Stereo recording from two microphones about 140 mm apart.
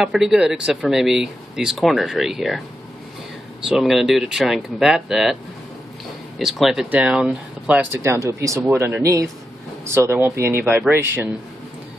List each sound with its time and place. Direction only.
0.0 s speech: centre (ahead or behind)
3.6 s speech: centre (ahead or behind)